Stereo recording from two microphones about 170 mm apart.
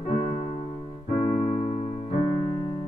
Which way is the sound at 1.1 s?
45° left (ahead or behind).